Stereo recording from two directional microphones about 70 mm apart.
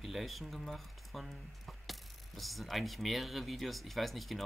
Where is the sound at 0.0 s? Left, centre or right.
Centre.